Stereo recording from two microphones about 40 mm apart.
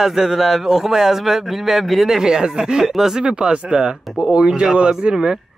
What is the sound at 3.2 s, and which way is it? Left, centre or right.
Speech, right.